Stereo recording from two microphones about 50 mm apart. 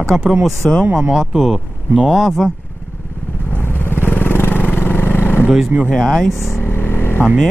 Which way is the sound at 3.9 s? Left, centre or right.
Left.